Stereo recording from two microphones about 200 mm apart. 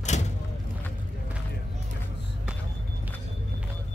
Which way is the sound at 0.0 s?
35° left (ahead or behind).